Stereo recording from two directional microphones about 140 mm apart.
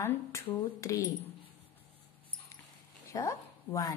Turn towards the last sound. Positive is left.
turn(degrees=25)  # may be behind; listen again after turning